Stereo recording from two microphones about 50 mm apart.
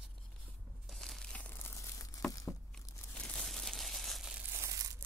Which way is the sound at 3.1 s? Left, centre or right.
Left.